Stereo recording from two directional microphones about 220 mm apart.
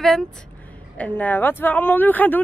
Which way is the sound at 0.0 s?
Centre (ahead or behind).